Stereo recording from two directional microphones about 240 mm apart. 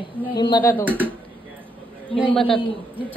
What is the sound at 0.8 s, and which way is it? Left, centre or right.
Speech, centre.